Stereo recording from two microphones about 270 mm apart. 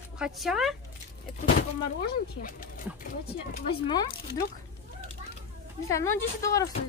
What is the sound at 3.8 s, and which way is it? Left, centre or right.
Speech, centre.